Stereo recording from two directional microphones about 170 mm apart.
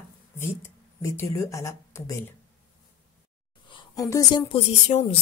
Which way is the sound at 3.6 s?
30° left (ahead or behind).